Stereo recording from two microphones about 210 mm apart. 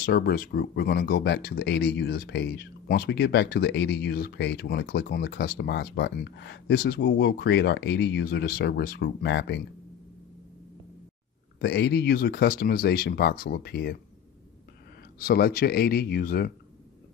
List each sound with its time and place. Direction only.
0.0 s speech: 50° left (ahead or behind)
11.6 s speech: 50° left (ahead or behind)
15.1 s speech: 45° left (ahead or behind)